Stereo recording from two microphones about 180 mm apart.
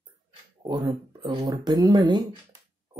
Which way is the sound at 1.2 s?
25° right (ahead or behind).